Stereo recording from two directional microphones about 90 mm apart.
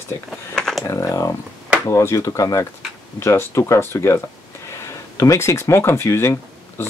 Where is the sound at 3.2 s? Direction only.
30° left (ahead or behind).